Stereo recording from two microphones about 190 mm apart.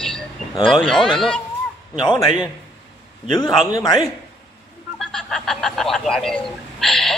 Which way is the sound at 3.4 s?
20° left (ahead or behind).